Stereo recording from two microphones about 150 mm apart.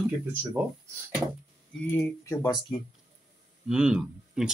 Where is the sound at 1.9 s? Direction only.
20° left (ahead or behind).